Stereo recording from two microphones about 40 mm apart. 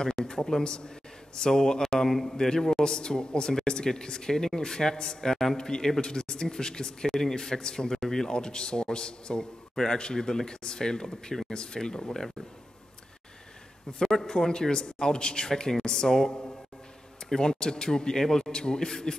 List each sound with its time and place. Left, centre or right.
0.0 s a man's voice: centre
13.9 s a man's voice: centre